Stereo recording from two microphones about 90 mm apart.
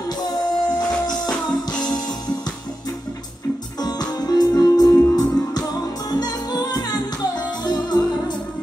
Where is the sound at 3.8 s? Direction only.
50° left (ahead or behind).